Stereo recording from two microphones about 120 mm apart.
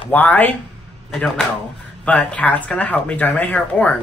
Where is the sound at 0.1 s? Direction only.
15° left (ahead or behind).